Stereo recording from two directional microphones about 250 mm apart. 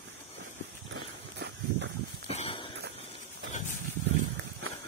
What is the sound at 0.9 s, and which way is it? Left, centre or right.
Horse, right.